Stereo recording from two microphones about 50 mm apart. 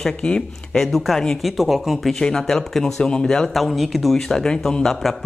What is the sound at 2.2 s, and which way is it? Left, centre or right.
Speech, centre.